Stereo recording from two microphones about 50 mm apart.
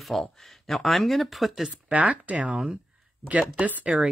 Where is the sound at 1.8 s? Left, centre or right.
Right.